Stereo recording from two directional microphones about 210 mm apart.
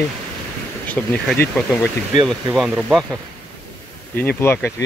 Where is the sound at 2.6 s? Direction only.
5° right (ahead or behind).